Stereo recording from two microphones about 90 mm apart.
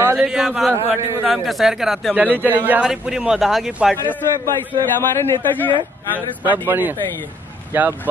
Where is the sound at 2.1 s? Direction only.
20° right (ahead or behind).